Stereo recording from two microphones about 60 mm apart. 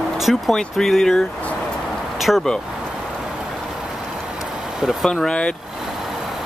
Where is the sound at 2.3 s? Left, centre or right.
Centre.